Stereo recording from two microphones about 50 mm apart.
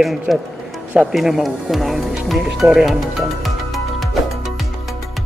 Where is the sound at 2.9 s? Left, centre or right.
Centre.